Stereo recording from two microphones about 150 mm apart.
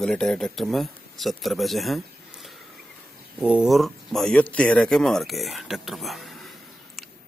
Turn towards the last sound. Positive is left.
turn(degrees=0)  # may be behind; listen again after turning